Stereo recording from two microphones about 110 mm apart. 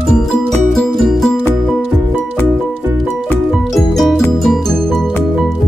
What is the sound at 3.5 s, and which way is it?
Music, centre (ahead or behind).